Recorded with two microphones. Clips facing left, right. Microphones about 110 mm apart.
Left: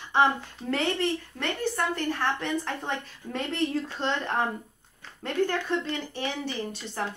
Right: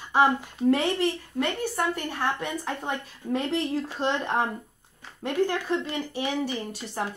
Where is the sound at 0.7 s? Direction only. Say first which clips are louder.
Right 3 dB; 15° right (ahead or behind).